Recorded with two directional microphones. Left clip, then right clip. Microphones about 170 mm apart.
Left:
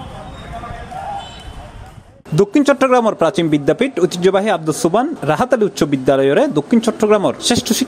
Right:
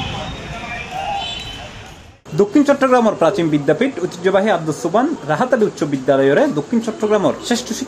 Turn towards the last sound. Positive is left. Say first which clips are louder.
# left 4 dB
turn(degrees=35)  # may be behind; listen again after turning